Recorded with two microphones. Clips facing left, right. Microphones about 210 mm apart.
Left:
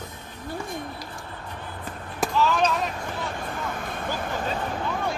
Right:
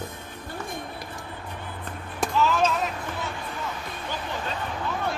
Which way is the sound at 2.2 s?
Centre (ahead or behind).